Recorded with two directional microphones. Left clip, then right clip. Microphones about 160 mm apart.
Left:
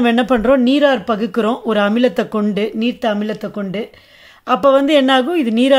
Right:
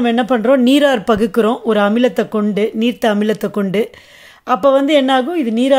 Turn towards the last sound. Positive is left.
turn(degrees=0)  # may be behind; listen again after turning